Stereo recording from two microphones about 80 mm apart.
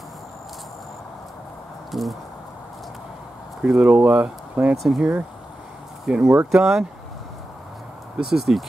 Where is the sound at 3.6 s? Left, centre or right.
Centre.